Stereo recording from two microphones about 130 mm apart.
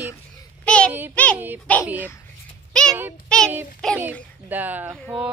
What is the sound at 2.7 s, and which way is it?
Child singing, 5° left (ahead or behind).